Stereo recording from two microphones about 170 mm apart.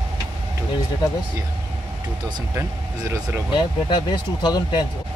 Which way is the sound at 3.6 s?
30° left (ahead or behind).